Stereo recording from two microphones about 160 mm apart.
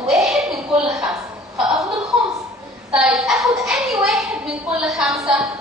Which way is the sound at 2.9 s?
Centre (ahead or behind).